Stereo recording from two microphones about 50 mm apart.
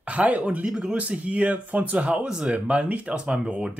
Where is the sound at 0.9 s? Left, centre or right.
Right.